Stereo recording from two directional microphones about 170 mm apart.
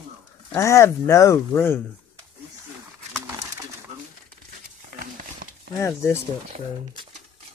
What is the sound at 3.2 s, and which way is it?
Pigeon, 20° right (ahead or behind).